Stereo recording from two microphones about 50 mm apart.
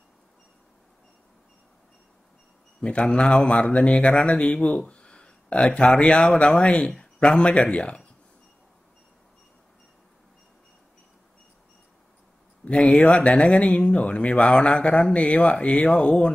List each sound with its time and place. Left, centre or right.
2.8 s speech: left
12.6 s speech: left